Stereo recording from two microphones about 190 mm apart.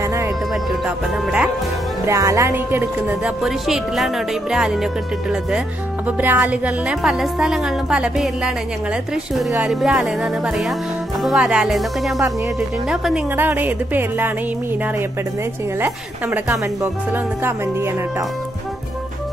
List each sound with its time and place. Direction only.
0.0 s music: 15° right (ahead or behind)
0.8 s a woman's voice: 5° right (ahead or behind)
2.0 s a woman's voice: 15° right (ahead or behind)
6.0 s a woman's voice: 10° right (ahead or behind)